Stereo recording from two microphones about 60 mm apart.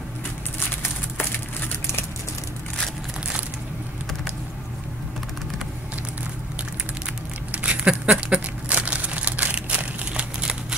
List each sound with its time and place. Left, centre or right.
7.5 s crumpling: right